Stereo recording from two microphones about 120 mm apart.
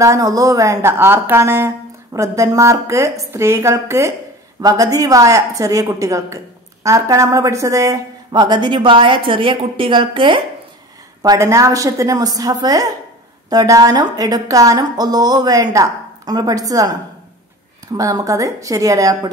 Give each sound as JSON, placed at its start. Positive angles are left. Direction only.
{"t": 0.0, "sound": "a woman's voice", "side_deg": -30}
{"t": 11.2, "sound": "a woman's voice", "side_deg": -25}
{"t": 17.9, "sound": "a woman's voice", "side_deg": -30}